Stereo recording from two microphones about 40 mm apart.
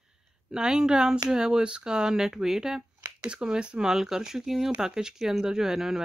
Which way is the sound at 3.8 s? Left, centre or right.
Centre.